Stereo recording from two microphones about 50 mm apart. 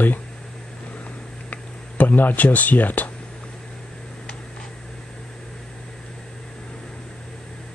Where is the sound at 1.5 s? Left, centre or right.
Left.